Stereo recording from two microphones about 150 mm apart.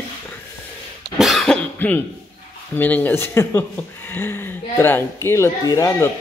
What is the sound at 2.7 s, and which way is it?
Speech, 10° left (ahead or behind).